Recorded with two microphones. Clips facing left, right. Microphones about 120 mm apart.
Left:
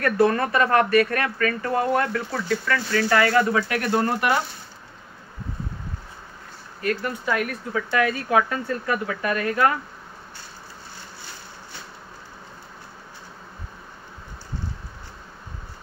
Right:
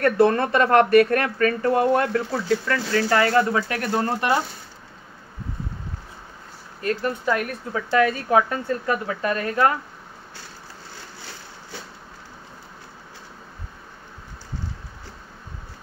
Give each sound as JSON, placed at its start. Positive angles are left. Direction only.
{"t": 0.0, "sound": "speech", "side_deg": -25}
{"t": 6.8, "sound": "speech", "side_deg": -30}